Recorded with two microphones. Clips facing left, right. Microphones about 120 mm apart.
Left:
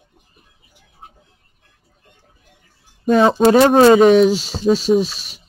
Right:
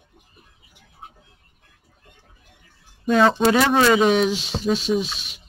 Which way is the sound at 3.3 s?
35° left (ahead or behind).